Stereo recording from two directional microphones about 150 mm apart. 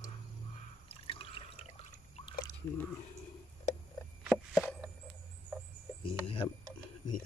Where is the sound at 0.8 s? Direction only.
40° left (ahead or behind).